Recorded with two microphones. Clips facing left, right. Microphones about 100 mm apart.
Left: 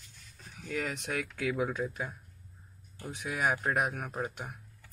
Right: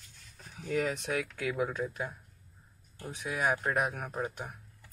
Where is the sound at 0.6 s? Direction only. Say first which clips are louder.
Right 4 dB; 20° right (ahead or behind).